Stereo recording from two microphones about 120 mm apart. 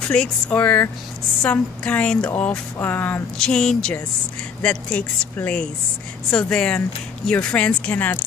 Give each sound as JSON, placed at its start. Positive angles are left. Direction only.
{"t": 0.1, "sound": "speech", "side_deg": 10}